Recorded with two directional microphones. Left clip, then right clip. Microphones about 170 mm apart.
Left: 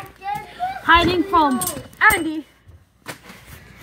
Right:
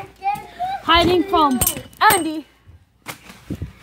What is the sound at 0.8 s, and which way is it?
Speech, 30° right (ahead or behind).